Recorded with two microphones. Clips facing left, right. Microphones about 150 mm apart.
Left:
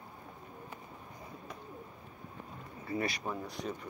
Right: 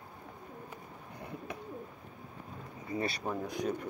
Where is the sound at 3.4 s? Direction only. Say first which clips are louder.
Right 5 dB; 50° right (ahead or behind).